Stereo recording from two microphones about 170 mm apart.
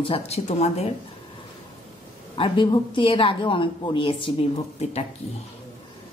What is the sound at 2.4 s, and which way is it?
Speech, 30° left (ahead or behind).